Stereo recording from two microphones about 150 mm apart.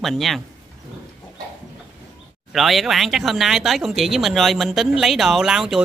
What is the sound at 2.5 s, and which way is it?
Speech, centre (ahead or behind).